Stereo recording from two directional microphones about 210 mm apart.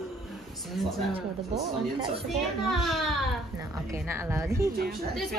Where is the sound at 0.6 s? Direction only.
Centre (ahead or behind).